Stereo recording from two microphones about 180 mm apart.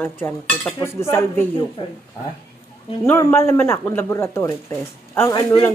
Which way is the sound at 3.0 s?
15° left (ahead or behind).